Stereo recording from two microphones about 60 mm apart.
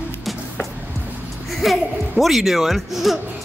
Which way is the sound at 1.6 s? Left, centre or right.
Centre.